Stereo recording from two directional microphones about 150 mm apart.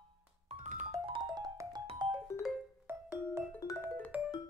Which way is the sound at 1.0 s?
30° right (ahead or behind).